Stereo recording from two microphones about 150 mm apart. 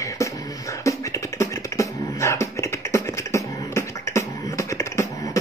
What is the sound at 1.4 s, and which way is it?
Beatboxing, 20° left (ahead or behind).